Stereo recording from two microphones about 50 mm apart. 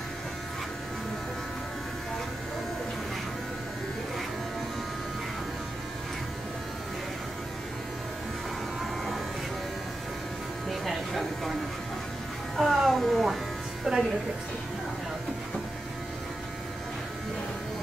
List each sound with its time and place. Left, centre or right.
10.7 s a sound: centre
12.5 s electric shaver: centre
13.9 s electric shaver: centre